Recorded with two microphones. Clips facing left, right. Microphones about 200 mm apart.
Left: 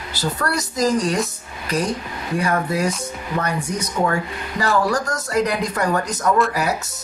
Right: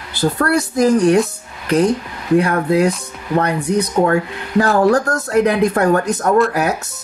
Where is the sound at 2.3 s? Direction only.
60° right (ahead or behind).